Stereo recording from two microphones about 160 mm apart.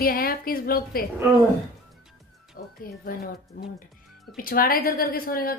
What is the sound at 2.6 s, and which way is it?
Speech, 65° left (ahead or behind).